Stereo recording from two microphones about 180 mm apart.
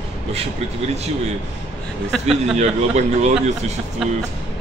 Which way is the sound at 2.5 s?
40° right (ahead or behind).